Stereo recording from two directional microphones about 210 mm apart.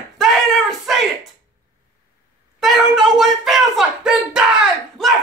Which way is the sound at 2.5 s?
Centre (ahead or behind).